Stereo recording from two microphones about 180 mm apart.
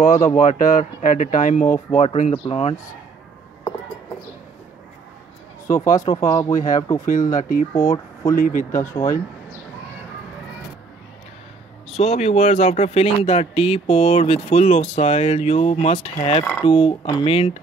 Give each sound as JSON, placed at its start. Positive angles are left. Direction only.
{"t": 0.0, "sound": "speech", "side_deg": 45}
{"t": 6.0, "sound": "speech", "side_deg": 25}
{"t": 7.3, "sound": "speech", "side_deg": 50}
{"t": 7.7, "sound": "speech", "side_deg": 20}
{"t": 8.4, "sound": "speech", "side_deg": 50}
{"t": 8.7, "sound": "speech", "side_deg": 15}
{"t": 12.0, "sound": "speech", "side_deg": 35}
{"t": 16.6, "sound": "speech", "side_deg": 30}